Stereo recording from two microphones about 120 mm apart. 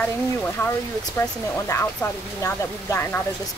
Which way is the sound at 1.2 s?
20° left (ahead or behind).